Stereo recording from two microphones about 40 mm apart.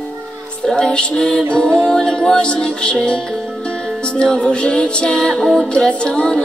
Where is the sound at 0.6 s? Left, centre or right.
Left.